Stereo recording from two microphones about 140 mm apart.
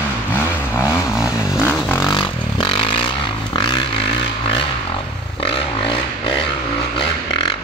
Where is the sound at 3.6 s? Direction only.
35° left (ahead or behind).